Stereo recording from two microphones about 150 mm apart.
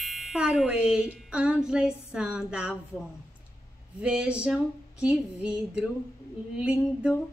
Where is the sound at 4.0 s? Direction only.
10° right (ahead or behind).